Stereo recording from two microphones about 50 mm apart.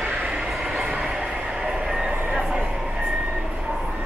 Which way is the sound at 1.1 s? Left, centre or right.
Centre.